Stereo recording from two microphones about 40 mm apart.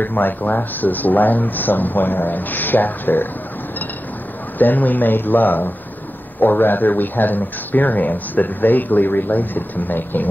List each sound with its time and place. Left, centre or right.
0.0 s speech: left
4.6 s speech: left